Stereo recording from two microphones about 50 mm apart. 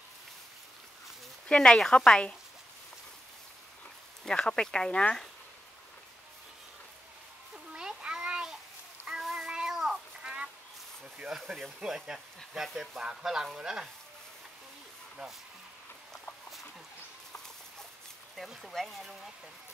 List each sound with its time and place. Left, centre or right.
1.5 s speech: centre
4.2 s speech: centre
7.7 s a sound: centre
9.0 s honk: centre
11.3 s speech: centre
11.8 s speech: centre
18.7 s speech: centre